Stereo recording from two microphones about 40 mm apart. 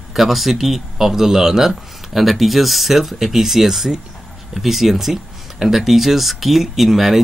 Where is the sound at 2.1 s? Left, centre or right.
Centre.